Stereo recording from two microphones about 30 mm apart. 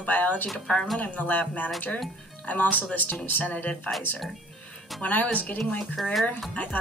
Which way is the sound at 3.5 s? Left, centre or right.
Left.